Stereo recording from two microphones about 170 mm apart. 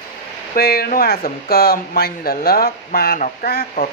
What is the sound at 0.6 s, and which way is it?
Speech, 65° left (ahead or behind).